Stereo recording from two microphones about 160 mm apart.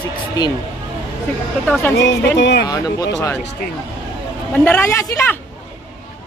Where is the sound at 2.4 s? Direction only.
90° left.